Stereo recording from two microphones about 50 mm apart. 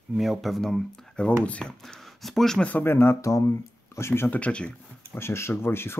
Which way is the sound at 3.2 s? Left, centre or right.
Left.